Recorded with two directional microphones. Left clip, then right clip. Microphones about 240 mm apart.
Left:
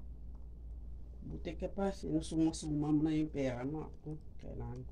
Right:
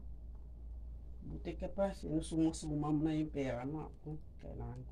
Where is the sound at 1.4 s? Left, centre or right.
Centre.